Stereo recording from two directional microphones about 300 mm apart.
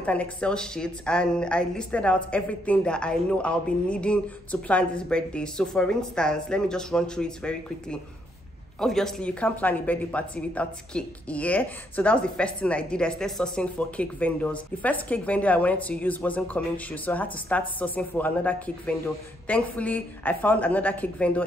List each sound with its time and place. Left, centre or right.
0.0 s a woman's voice: centre